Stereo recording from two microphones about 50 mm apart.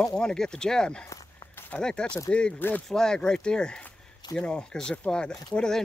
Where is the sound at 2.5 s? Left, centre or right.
Left.